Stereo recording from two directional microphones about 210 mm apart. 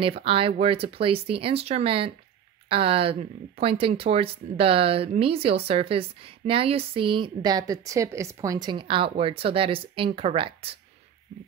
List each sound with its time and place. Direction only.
0.0 s speech: 25° right (ahead or behind)